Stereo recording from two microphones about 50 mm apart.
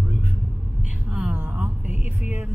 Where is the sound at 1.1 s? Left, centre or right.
Right.